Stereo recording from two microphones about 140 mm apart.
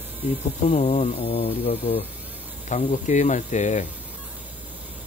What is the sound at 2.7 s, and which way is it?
Speech, 60° left (ahead or behind).